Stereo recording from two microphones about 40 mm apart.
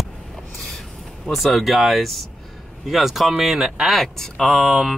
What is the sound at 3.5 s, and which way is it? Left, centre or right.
Speech, centre.